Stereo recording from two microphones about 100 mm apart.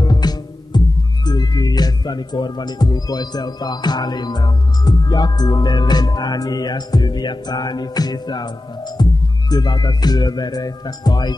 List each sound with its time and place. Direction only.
0.0 s music: 40° left (ahead or behind)
9.5 s speech: 45° left (ahead or behind)